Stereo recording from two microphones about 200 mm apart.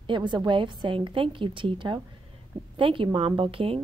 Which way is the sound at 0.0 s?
25° right (ahead or behind).